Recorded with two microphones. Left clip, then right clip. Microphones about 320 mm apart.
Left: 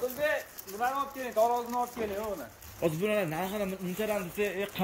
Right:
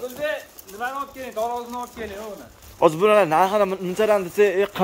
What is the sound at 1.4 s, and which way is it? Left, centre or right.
Speech, left.